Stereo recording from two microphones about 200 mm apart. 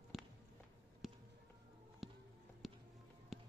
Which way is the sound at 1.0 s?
Centre (ahead or behind).